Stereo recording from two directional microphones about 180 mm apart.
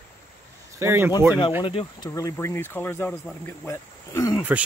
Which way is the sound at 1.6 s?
30° left (ahead or behind).